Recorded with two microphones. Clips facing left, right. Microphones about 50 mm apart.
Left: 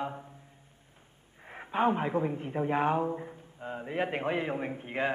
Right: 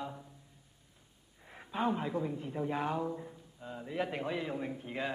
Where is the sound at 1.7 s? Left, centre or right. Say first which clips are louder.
Left 6 dB; left.